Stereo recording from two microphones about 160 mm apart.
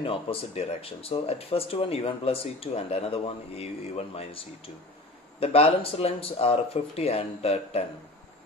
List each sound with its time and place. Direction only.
0.0 s speech: 35° left (ahead or behind)